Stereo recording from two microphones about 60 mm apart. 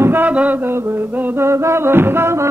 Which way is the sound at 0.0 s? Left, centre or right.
Right.